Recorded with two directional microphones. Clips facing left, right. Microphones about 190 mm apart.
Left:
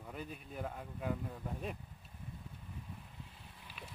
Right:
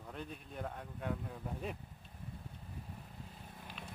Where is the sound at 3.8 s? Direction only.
5° left (ahead or behind).